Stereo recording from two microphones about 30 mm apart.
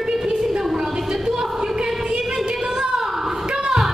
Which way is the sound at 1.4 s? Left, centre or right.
Right.